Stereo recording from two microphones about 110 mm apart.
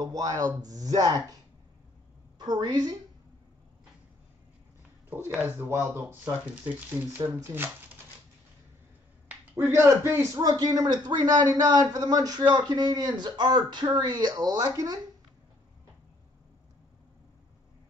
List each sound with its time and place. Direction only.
0.0 s a man's voice: 30° right (ahead or behind)
2.3 s a woman's voice: 40° right (ahead or behind)
5.1 s speech: 15° right (ahead or behind)
9.3 s speech: 20° right (ahead or behind)
10.4 s a man's voice: 35° right (ahead or behind)